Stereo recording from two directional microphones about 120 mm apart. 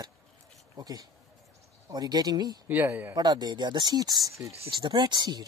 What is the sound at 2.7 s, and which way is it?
Speech, 15° right (ahead or behind).